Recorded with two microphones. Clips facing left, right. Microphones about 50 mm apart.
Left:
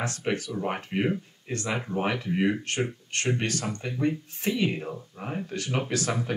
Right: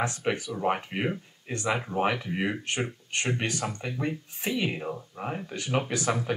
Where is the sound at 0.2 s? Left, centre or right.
Centre.